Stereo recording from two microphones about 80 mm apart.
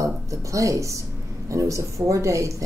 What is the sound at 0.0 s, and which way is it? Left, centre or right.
Speech, right.